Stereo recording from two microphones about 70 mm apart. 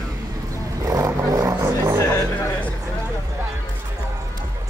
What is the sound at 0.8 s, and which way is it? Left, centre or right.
Vehicle, right.